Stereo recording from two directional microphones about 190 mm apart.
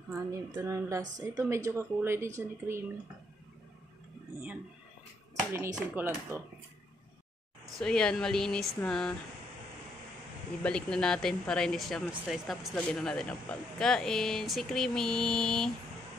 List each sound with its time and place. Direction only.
0.1 s speech: 15° right (ahead or behind)
5.5 s speech: 10° right (ahead or behind)
7.8 s speech: 5° left (ahead or behind)
10.6 s speech: 5° left (ahead or behind)